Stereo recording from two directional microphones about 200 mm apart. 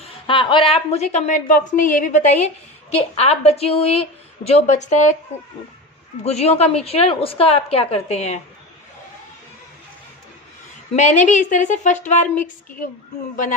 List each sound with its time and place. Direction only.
0.0 s a woman's voice: 25° left (ahead or behind)
6.2 s a woman's voice: 30° left (ahead or behind)
11.0 s a woman's voice: 35° left (ahead or behind)